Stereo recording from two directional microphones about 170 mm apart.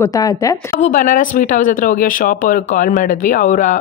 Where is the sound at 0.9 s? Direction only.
50° left (ahead or behind).